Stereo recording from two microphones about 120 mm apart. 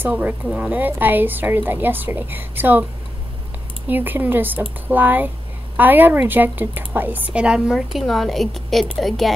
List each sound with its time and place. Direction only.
0.1 s a woman's voice: 10° right (ahead or behind)
3.9 s a woman's voice: 15° right (ahead or behind); by 9.3 s centre (ahead or behind)